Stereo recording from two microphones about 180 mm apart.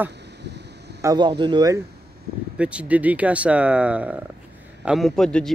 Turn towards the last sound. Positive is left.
turn(degrees=5)  # may be behind; listen again after turning